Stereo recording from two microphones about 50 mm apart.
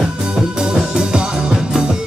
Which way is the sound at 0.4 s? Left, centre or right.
Centre.